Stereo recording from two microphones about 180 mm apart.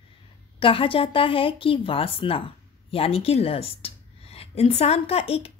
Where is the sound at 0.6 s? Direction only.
30° left (ahead or behind).